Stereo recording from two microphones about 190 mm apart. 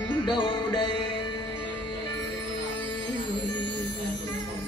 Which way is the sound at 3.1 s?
25° left (ahead or behind).